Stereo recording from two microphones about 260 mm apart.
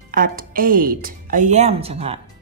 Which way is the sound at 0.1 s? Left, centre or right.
Right.